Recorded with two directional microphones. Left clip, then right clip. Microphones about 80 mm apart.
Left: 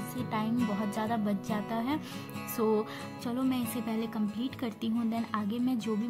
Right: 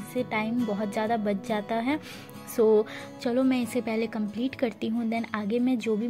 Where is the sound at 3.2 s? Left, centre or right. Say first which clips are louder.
Right 8 dB; right.